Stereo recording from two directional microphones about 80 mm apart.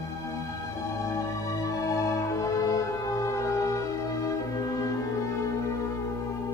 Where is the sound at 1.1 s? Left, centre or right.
Left.